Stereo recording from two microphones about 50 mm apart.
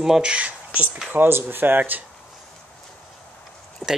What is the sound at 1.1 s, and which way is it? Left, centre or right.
Speech, right.